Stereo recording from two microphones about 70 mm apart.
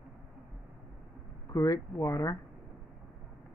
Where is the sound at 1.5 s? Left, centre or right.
Left.